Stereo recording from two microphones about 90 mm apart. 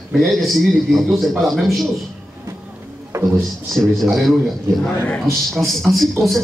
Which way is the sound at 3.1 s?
40° right (ahead or behind).